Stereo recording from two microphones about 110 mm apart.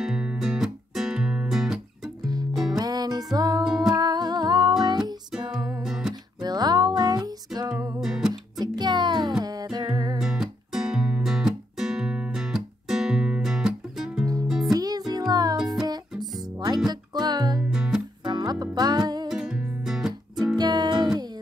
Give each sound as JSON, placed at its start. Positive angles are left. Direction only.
{"t": 0.0, "sound": "music", "side_deg": -5}
{"t": 2.8, "sound": "music", "side_deg": -35}
{"t": 5.3, "sound": "music", "side_deg": -5}
{"t": 6.4, "sound": "music", "side_deg": -40}
{"t": 8.0, "sound": "music", "side_deg": -5}
{"t": 8.3, "sound": "music", "side_deg": -40}
{"t": 10.2, "sound": "music", "side_deg": -5}
{"t": 14.7, "sound": "music", "side_deg": -35}
{"t": 16.1, "sound": "music", "side_deg": 0}
{"t": 16.5, "sound": "music", "side_deg": -40}
{"t": 17.6, "sound": "music", "side_deg": -5}
{"t": 18.2, "sound": "music", "side_deg": -40}
{"t": 19.2, "sound": "music", "side_deg": -5}
{"t": 20.5, "sound": "music", "side_deg": -40}